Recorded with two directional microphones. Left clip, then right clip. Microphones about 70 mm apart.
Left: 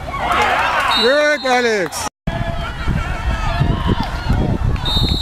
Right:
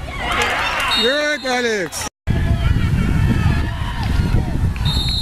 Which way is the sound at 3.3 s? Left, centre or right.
Left.